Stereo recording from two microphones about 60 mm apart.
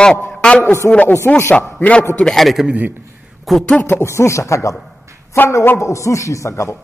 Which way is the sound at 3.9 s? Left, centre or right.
Left.